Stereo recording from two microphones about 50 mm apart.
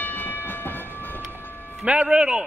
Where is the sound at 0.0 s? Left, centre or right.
Left.